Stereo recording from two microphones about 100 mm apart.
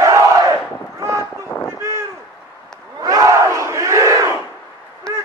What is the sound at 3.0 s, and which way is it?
Crowd, 40° right (ahead or behind).